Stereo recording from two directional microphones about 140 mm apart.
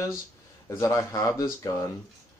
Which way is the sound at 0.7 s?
20° left (ahead or behind).